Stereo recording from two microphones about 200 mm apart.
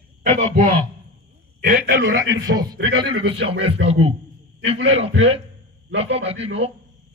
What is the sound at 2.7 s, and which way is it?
Speech, 70° right (ahead or behind).